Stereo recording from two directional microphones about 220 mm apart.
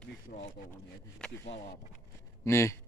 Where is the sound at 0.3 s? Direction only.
40° left (ahead or behind).